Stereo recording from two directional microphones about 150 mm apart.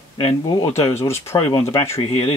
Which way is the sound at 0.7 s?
20° left (ahead or behind).